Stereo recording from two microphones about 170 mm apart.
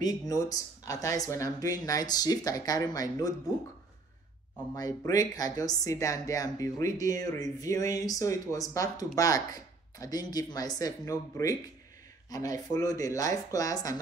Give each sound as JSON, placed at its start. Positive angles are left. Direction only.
{"t": 0.3, "sound": "speech", "side_deg": 20}
{"t": 4.7, "sound": "speech", "side_deg": 20}